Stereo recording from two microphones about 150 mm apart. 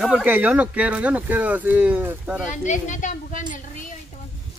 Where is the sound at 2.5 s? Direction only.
55° left (ahead or behind).